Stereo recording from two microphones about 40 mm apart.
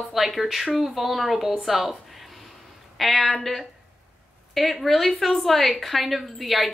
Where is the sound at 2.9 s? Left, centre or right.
Centre.